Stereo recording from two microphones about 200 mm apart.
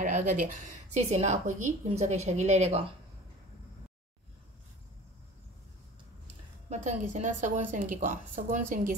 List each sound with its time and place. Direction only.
0.0 s a woman's voice: 40° right (ahead or behind)
6.7 s a woman's voice: 35° right (ahead or behind)